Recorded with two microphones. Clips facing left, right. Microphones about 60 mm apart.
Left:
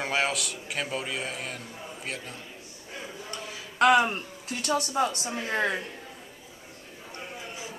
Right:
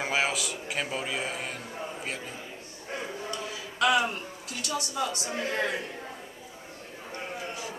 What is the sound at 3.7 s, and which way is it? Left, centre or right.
A woman's voice, left.